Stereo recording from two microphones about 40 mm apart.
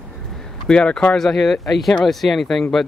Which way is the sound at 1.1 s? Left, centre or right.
Centre.